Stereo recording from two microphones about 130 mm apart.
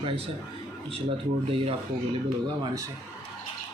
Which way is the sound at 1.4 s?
45° right (ahead or behind).